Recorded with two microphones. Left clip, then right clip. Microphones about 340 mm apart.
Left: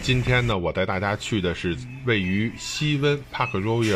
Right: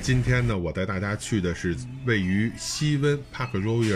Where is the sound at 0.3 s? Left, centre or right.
Centre.